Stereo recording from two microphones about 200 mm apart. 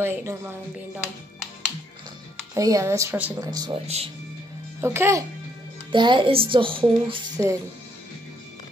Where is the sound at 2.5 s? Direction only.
15° right (ahead or behind).